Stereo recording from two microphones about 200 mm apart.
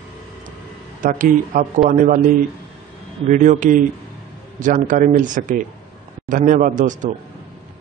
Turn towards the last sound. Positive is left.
turn(degrees=-40)  # may be behind; listen again after turning